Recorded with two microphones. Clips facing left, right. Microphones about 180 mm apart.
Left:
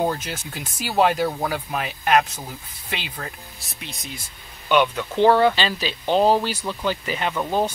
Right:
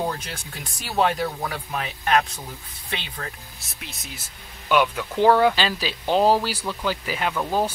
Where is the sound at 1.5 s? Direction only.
10° left (ahead or behind).